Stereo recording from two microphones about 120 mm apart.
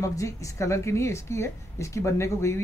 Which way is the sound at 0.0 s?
25° left (ahead or behind).